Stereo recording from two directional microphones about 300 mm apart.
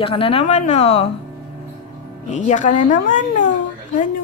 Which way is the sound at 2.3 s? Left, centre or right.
Left.